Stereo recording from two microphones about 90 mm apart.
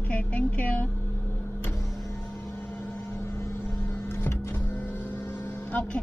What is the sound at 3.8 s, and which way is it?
Vehicle, 25° left (ahead or behind).